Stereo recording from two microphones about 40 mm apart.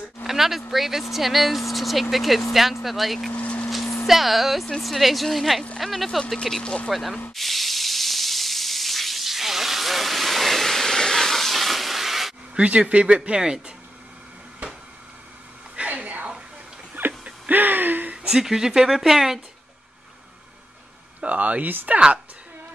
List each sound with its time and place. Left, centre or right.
0.3 s speech: centre
3.3 s vehicle: left
4.1 s speech: centre
6.6 s speech: left
6.9 s speech: centre
7.3 s hiss: centre
12.5 s speech: right
14.6 s a sound: right
15.9 s a sound: right
18.3 s speech: centre
21.2 s speech: right